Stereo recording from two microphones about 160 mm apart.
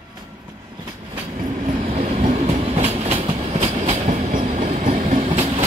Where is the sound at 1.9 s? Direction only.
45° right (ahead or behind).